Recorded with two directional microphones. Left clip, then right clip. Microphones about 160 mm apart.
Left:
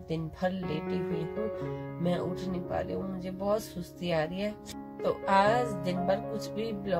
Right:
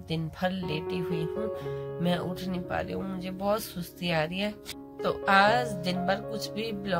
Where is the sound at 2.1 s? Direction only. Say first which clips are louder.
Even; 15° left (ahead or behind).